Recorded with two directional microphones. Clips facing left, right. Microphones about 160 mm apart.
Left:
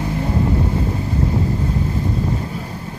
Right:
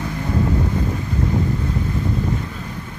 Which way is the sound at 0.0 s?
25° left (ahead or behind).